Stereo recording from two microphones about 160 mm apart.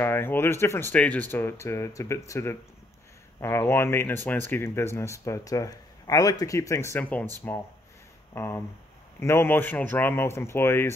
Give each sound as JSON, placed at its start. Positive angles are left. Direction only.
{"t": 0.0, "sound": "speech", "side_deg": 15}
{"t": 8.4, "sound": "speech", "side_deg": 15}